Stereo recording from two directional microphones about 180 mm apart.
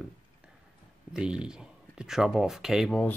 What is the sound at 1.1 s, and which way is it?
Speech, 5° right (ahead or behind).